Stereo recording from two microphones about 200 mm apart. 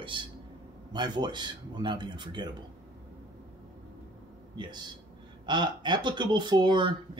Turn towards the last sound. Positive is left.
turn(degrees=-20)  # may be behind; listen again after turning